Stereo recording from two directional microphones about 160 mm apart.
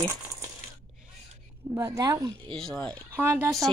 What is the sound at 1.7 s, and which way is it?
Speech, 20° right (ahead or behind).